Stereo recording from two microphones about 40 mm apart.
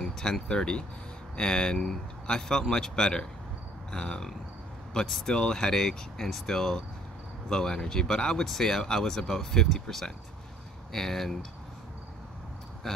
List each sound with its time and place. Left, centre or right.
0.0 s speech: centre
12.8 s speech: centre